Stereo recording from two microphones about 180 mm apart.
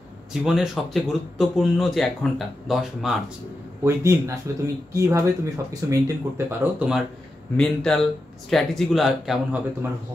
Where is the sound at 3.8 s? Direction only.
15° right (ahead or behind).